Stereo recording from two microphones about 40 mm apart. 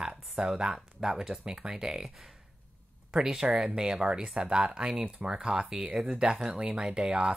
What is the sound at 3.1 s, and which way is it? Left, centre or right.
Speech, centre.